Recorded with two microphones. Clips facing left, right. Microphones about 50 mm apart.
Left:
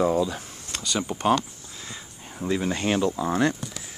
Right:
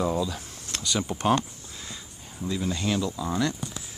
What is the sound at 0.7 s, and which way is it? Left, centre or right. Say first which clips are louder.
Speech: left 1 dB; centre.